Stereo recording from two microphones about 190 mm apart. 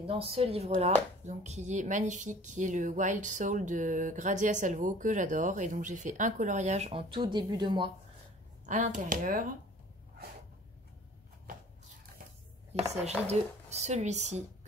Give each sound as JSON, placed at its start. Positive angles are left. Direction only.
{"t": 0.0, "sound": "speech", "side_deg": -30}
{"t": 8.6, "sound": "speech", "side_deg": -40}
{"t": 12.8, "sound": "speech", "side_deg": -35}